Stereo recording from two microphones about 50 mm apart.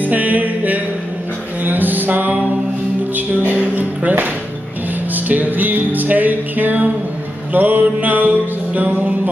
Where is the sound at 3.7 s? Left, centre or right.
Right.